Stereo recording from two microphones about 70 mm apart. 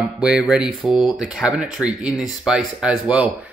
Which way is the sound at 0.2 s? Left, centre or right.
Centre.